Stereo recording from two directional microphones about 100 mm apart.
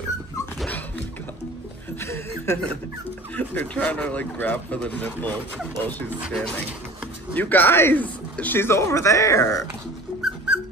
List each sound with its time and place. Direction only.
2.0 s a sound: 25° left (ahead or behind)
3.3 s speech: 15° left (ahead or behind)
7.3 s speech: 20° left (ahead or behind); by 9.7 s 35° left (ahead or behind)
10.2 s dog: 10° right (ahead or behind)